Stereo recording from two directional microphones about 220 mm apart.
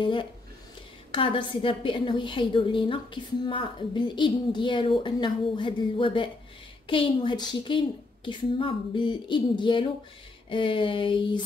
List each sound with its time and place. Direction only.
0.0 s a woman's voice: 20° left (ahead or behind)